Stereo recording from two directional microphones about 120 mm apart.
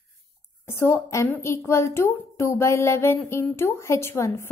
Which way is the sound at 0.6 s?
25° left (ahead or behind).